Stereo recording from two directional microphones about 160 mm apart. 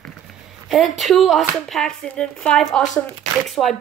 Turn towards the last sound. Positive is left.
turn(degrees=0)  # may be behind; listen again after turning